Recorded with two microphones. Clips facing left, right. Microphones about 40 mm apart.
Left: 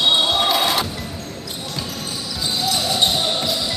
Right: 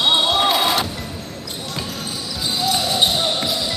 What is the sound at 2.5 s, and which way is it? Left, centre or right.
Basketball bounce, centre.